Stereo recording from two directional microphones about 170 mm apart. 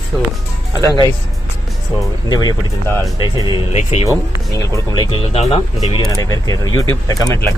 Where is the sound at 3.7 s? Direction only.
40° left (ahead or behind).